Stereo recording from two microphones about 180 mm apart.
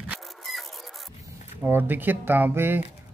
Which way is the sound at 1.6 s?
10° right (ahead or behind).